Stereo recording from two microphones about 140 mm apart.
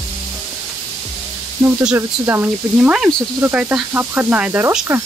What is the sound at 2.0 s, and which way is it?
Speech, 15° right (ahead or behind).